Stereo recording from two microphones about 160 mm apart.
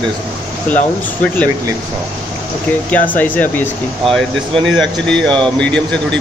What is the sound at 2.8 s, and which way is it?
A man's voice, 10° left (ahead or behind).